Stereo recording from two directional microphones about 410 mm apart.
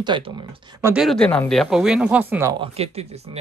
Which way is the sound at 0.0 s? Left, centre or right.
Centre.